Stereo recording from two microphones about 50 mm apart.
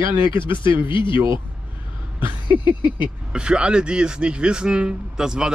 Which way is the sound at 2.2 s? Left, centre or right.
Right.